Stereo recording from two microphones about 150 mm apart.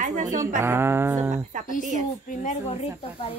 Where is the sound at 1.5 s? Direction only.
55° right (ahead or behind).